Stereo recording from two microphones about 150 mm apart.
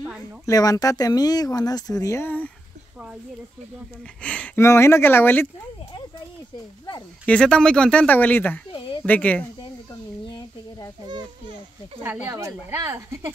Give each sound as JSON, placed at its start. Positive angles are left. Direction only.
{"t": 0.2, "sound": "speech", "side_deg": 25}
{"t": 4.2, "sound": "speech", "side_deg": 10}
{"t": 7.2, "sound": "speech", "side_deg": 5}
{"t": 11.1, "sound": "children playing", "side_deg": -30}
{"t": 12.0, "sound": "a woman's voice", "side_deg": -15}